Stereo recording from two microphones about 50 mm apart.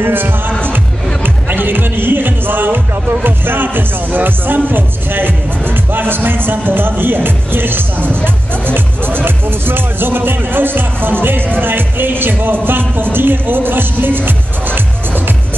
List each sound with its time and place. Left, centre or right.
0.0 s speech: right